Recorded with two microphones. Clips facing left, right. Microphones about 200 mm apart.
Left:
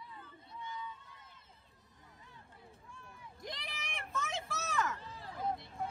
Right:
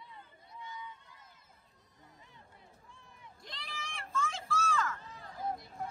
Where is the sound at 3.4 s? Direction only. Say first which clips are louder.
Left 2 dB; 20° left (ahead or behind).